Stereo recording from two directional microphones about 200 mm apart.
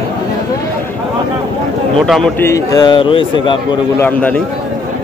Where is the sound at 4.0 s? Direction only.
5° left (ahead or behind).